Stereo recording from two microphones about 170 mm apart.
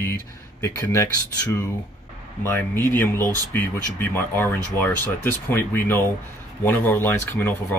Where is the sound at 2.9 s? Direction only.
15° left (ahead or behind).